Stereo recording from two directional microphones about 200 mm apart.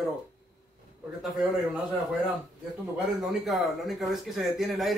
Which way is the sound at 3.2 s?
Centre (ahead or behind).